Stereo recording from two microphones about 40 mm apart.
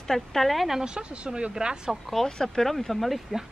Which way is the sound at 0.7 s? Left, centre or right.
Right.